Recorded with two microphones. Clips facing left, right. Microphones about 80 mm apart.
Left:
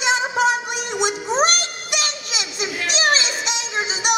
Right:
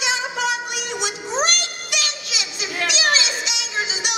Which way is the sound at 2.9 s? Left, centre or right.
Left.